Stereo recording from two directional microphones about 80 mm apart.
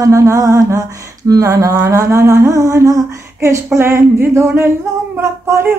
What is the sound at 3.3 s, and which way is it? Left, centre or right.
Speech, right.